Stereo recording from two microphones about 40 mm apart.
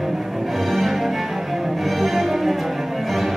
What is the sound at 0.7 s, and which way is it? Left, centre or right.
Music, centre.